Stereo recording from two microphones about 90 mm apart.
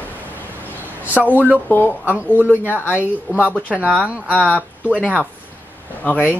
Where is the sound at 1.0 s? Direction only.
20° right (ahead or behind).